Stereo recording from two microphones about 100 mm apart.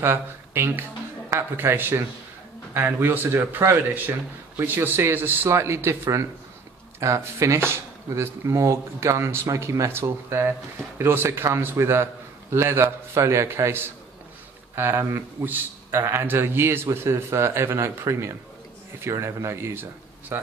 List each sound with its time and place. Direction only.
0.0 s a man's voice: 25° right (ahead or behind)